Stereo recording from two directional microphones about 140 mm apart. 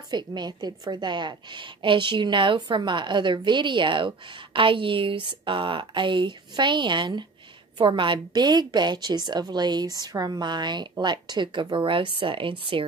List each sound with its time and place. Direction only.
0.1 s a woman's voice: 30° right (ahead or behind)